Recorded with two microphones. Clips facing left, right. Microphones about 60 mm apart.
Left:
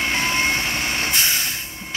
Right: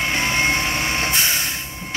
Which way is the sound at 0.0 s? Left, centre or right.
Centre.